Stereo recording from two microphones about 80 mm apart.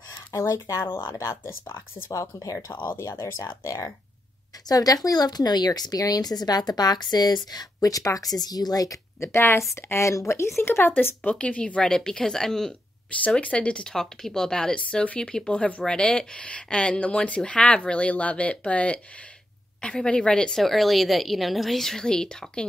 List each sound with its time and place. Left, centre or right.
0.1 s speech: left
4.6 s speech: left
11.3 s speech: centre
13.2 s a woman's voice: centre